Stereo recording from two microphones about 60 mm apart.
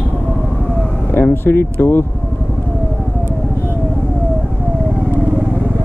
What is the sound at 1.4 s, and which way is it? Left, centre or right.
Speech, left.